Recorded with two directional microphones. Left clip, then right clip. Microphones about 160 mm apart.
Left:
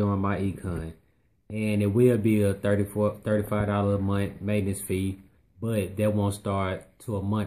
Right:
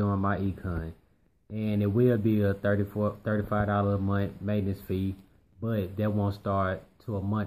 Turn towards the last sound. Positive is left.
turn(degrees=10)  # may be behind; listen again after turning